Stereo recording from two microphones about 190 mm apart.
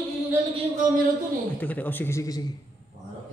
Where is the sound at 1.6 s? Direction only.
10° left (ahead or behind).